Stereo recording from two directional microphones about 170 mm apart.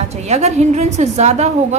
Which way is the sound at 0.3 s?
40° right (ahead or behind).